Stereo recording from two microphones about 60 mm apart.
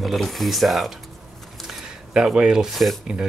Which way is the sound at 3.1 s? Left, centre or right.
Centre.